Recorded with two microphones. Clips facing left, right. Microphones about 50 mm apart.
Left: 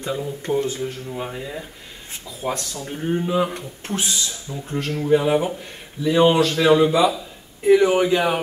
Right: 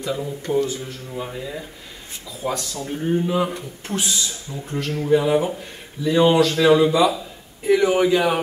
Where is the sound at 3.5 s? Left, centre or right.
Left.